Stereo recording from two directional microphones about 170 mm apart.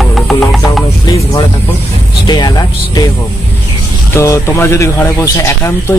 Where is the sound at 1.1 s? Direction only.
20° left (ahead or behind).